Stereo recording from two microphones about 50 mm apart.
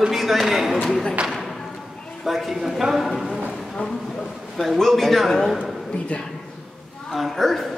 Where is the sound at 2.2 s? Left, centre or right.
Centre.